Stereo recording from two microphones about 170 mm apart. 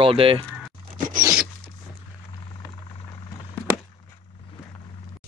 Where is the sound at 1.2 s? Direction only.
15° right (ahead or behind).